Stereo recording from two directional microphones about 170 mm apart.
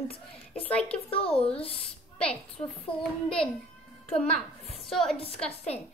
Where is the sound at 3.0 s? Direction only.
5° left (ahead or behind).